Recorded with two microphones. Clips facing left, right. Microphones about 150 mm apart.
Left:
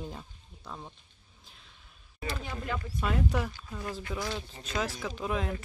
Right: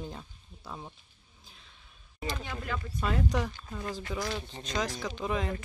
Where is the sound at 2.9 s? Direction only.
5° left (ahead or behind).